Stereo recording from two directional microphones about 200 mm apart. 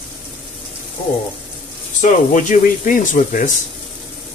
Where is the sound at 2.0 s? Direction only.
40° left (ahead or behind).